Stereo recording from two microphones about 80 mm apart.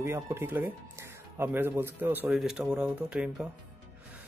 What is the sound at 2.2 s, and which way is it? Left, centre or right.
Speech, centre.